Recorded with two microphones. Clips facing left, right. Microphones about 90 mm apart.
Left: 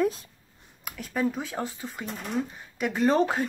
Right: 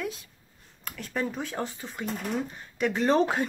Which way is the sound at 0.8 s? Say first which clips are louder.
Left 3 dB; 5° left (ahead or behind).